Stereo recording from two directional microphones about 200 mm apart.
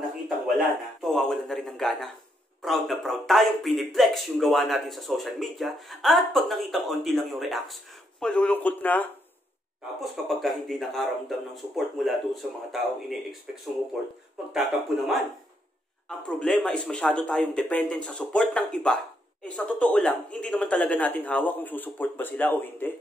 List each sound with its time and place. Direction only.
0.6 s speech: centre (ahead or behind)
14.5 s speech: centre (ahead or behind)
16.3 s speech: centre (ahead or behind)